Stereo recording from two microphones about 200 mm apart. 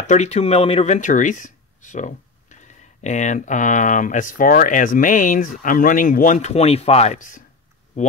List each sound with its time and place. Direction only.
0.0 s speech: 35° left (ahead or behind)